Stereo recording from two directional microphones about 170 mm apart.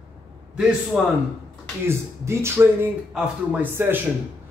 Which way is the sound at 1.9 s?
15° right (ahead or behind).